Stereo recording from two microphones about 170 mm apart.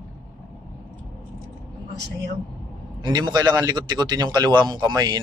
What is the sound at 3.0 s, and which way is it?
A man's voice, 25° right (ahead or behind).